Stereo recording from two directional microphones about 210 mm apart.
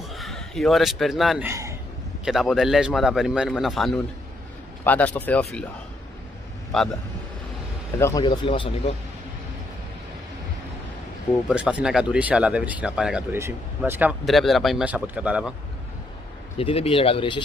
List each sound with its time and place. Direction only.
0.1 s speech: centre (ahead or behind)
1.5 s a sound: 15° right (ahead or behind)
2.2 s speech: centre (ahead or behind)
6.7 s speech: centre (ahead or behind)
8.0 s speech: 20° left (ahead or behind)
11.4 s speech: 5° right (ahead or behind)
16.5 s speech: 30° left (ahead or behind)